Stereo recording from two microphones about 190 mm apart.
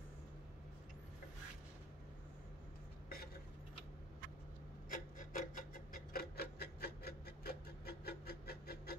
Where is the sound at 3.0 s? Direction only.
50° left (ahead or behind).